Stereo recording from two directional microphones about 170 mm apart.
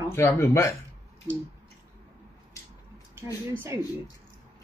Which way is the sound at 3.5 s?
15° right (ahead or behind).